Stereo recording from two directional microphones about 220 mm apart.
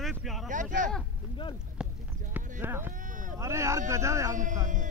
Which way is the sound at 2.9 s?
35° right (ahead or behind).